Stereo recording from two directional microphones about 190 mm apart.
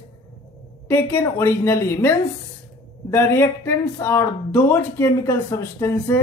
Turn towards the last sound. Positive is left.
turn(degrees=15)  # may be behind; listen again after turning